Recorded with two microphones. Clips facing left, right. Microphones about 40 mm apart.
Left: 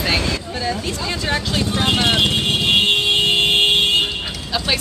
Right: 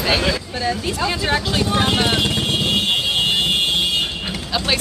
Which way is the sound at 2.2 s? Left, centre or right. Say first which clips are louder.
Left 2 dB; left.